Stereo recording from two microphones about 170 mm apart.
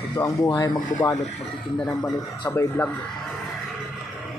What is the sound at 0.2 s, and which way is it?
Speech, 20° left (ahead or behind).